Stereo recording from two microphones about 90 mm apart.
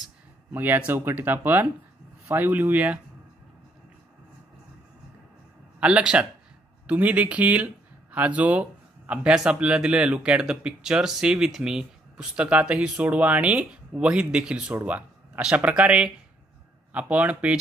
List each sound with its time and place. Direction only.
0.5 s speech: 20° right (ahead or behind)
5.8 s speech: 10° right (ahead or behind)